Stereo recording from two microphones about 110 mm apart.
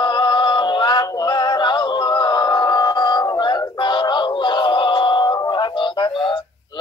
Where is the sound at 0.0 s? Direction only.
45° left (ahead or behind).